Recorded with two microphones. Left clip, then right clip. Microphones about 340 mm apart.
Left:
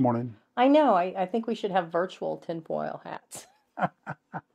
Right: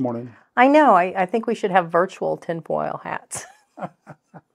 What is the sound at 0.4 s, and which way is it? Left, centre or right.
A woman's voice, right.